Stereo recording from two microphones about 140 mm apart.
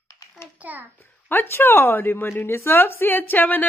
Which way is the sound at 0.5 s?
10° right (ahead or behind).